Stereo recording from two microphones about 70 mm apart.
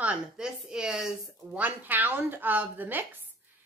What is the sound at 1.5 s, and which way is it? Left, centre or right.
Speech, right.